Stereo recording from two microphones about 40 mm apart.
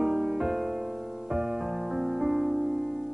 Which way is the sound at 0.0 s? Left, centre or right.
Centre.